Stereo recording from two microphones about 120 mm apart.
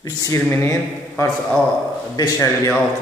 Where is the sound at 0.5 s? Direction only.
20° left (ahead or behind).